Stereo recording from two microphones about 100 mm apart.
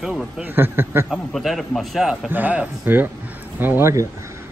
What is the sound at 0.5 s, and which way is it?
Speech, 25° right (ahead or behind).